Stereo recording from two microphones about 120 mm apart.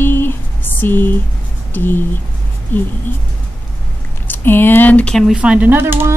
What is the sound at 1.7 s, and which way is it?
Speech, 15° left (ahead or behind).